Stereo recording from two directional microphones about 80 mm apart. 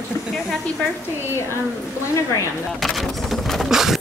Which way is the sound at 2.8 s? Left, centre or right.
Centre.